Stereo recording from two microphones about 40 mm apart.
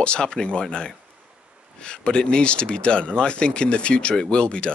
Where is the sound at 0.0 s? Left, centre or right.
Left.